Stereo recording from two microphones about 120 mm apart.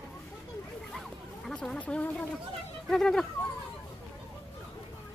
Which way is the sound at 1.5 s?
10° left (ahead or behind).